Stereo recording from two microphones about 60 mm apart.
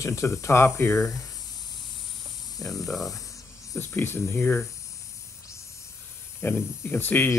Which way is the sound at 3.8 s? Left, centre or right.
Left.